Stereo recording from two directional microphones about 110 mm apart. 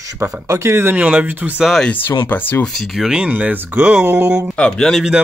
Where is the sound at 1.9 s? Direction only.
15° left (ahead or behind).